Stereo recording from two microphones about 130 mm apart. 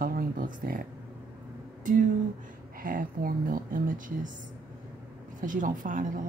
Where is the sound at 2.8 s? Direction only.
90° right.